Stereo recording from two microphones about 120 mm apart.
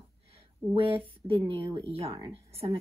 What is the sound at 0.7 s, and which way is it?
A woman's voice, 50° right (ahead or behind).